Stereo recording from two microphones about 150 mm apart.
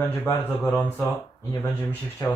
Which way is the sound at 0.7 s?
15° left (ahead or behind).